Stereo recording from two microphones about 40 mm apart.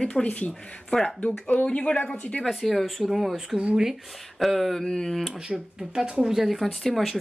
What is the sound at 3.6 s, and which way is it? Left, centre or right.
Speech, right.